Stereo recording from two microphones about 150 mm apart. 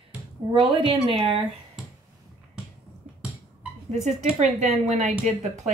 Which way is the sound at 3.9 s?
50° right (ahead or behind).